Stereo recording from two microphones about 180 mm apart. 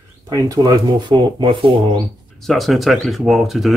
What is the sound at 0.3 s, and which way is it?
Speech, 20° right (ahead or behind).